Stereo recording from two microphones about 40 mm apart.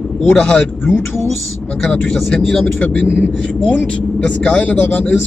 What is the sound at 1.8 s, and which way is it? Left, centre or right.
Speech, centre.